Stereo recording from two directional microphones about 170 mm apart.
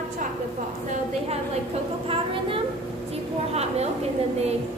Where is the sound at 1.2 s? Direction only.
35° right (ahead or behind).